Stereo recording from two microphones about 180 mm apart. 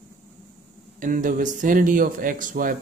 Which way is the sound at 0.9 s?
45° right (ahead or behind).